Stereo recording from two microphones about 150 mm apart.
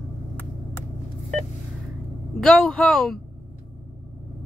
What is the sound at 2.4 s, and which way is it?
Speech, 5° left (ahead or behind).